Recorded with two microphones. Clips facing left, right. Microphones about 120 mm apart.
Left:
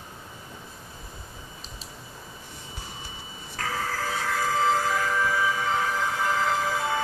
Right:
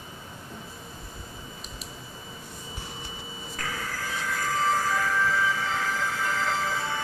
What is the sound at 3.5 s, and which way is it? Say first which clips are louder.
Printer: left 5 dB; 65° left (ahead or behind).